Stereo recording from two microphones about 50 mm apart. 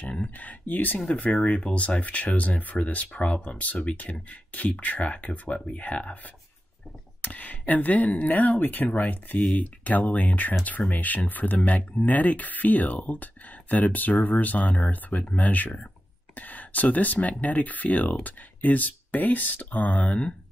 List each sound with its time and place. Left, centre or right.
0.1 s speech: left
7.2 s speech: left